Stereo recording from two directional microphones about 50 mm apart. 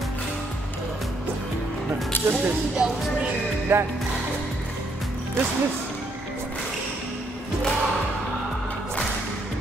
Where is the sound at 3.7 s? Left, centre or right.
Right.